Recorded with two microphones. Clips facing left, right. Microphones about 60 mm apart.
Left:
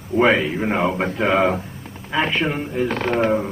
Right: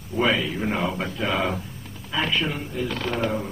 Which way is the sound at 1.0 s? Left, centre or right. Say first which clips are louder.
Left 7 dB; left.